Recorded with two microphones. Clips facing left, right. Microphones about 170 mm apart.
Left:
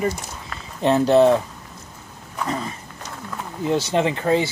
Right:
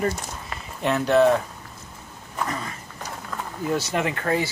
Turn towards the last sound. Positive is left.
turn(degrees=25)  # may be behind; listen again after turning